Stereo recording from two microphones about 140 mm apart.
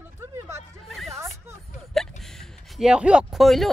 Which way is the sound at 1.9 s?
Centre (ahead or behind).